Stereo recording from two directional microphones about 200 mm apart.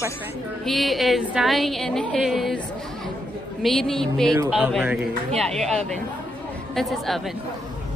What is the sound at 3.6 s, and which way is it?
A woman's voice, centre (ahead or behind).